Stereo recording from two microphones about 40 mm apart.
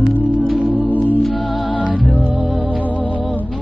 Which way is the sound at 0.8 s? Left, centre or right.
Left.